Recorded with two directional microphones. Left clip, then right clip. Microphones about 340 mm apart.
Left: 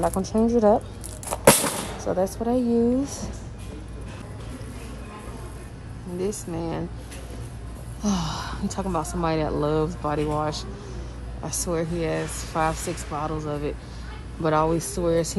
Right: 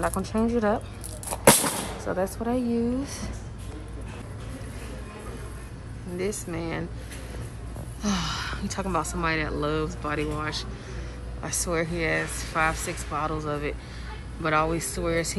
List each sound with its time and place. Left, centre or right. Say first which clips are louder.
0.0 s a woman's voice: left 4 dB; centre
1.3 s gunshot: left 2 dB; centre
2.7 s a woman's voice: left 6 dB; centre
6.1 s a woman's voice: left 2 dB; centre
8.0 s a woman's voice: left 1 dB; centre